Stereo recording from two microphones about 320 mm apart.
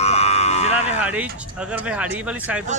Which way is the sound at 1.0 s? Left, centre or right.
Centre.